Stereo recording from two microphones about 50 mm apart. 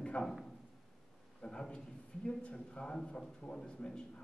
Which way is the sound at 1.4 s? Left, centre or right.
Centre.